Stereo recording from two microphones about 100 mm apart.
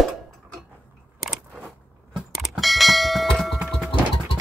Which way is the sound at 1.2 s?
Centre (ahead or behind).